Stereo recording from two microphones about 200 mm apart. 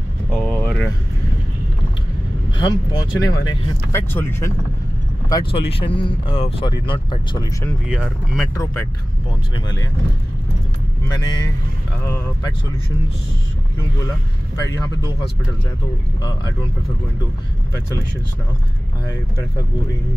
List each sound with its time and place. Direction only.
0.3 s vehicle: 5° left (ahead or behind)
2.6 s speech: 20° left (ahead or behind)
5.3 s speech: 25° left (ahead or behind)
7.9 s speech: 5° right (ahead or behind)
11.1 s speech: 20° left (ahead or behind)
16.2 s speech: 20° left (ahead or behind)